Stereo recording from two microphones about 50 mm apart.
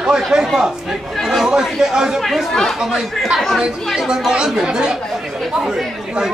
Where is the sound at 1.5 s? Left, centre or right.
Centre.